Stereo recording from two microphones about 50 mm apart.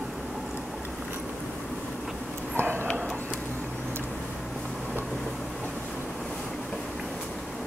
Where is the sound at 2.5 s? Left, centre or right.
Right.